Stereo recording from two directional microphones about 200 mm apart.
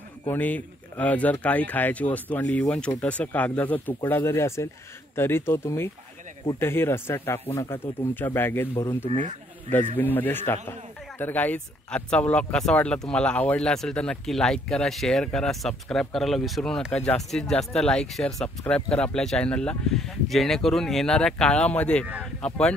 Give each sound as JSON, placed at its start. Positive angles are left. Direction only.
{"t": 0.3, "sound": "speech", "side_deg": 10}
{"t": 9.1, "sound": "speech", "side_deg": -35}
{"t": 9.9, "sound": "speech", "side_deg": 10}